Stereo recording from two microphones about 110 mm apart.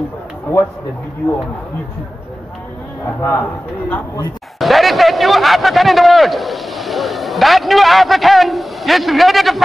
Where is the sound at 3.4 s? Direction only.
15° left (ahead or behind).